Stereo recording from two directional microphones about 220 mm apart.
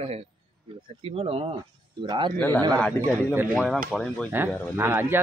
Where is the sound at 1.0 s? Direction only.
25° right (ahead or behind).